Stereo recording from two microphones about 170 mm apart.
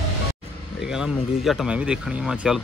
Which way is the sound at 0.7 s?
5° right (ahead or behind).